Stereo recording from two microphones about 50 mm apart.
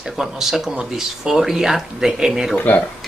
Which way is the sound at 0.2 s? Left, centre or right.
Centre.